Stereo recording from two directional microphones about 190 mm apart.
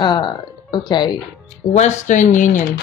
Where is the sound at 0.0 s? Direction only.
25° left (ahead or behind).